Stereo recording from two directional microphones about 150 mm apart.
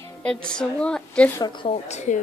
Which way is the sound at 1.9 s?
50° left (ahead or behind).